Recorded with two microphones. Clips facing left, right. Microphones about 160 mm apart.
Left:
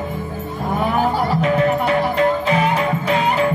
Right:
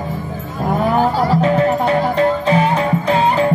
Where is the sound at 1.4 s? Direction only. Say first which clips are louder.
Right 1 dB; 30° right (ahead or behind).